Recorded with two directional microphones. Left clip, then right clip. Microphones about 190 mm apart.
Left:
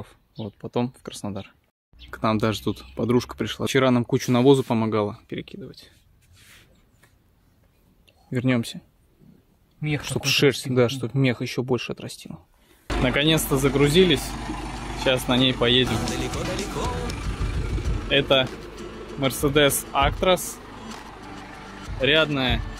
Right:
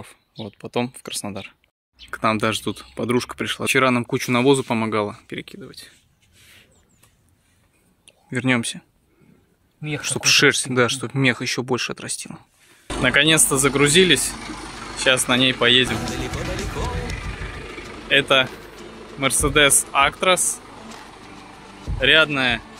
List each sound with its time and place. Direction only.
0.0 s speech: centre (ahead or behind)
8.3 s speech: centre (ahead or behind)
9.8 s speech: 20° left (ahead or behind)
10.0 s speech: centre (ahead or behind)
15.0 s music: centre (ahead or behind)
18.0 s speech: 5° left (ahead or behind)
19.8 s vehicle: 10° left (ahead or behind)